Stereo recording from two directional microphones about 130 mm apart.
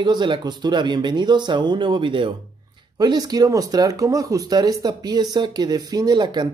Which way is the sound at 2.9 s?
30° right (ahead or behind).